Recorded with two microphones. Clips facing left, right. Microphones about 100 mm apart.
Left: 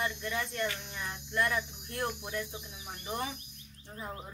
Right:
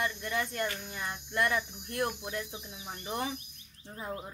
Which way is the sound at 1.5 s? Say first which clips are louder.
Right 2 dB; 10° right (ahead or behind).